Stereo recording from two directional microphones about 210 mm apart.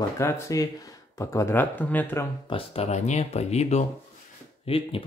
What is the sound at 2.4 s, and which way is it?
Speech, 25° left (ahead or behind).